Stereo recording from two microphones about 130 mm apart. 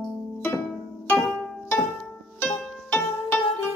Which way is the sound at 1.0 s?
20° left (ahead or behind).